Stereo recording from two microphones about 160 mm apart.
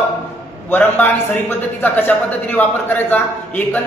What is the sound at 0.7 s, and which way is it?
A man's voice, 10° left (ahead or behind).